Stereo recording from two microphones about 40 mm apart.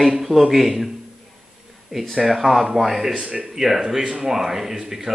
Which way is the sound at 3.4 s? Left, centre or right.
Centre.